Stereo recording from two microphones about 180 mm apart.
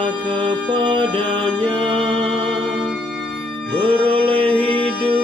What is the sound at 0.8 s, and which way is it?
Music, 25° right (ahead or behind).